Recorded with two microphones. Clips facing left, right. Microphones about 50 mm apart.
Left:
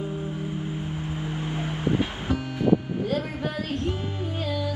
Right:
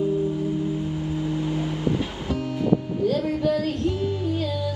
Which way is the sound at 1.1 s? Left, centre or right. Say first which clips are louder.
Right 6 dB; left.